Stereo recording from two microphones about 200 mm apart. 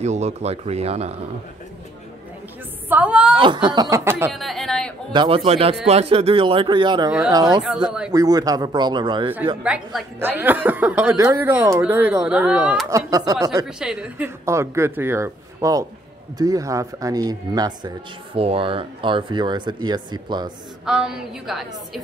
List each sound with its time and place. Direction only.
0.0 s speech: 35° right (ahead or behind)
2.9 s a woman's voice: 5° right (ahead or behind)
3.3 s speech: 25° right (ahead or behind)
4.3 s speech: centre (ahead or behind)
5.1 s speech: 25° right (ahead or behind)
7.1 s a woman's voice: 5° right (ahead or behind)
7.3 s speech: 20° right (ahead or behind)
9.6 s a woman's voice: 5° right (ahead or behind)
12.9 s a woman's voice: 15° right (ahead or behind)
13.7 s a woman's voice: 5° right (ahead or behind); by 20.5 s 20° right (ahead or behind)
20.8 s a woman's voice: 5° right (ahead or behind)